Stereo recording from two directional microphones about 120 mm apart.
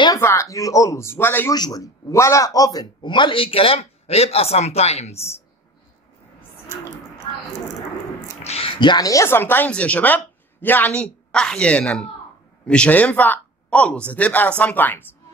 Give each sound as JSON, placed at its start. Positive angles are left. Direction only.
{"t": 0.2, "sound": "speech", "side_deg": 25}
{"t": 1.5, "sound": "a man's voice", "side_deg": 30}
{"t": 8.5, "sound": "a sound", "side_deg": 55}
{"t": 8.7, "sound": "speech", "side_deg": 40}